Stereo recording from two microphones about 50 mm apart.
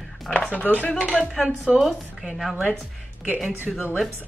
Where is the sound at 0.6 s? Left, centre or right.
Left.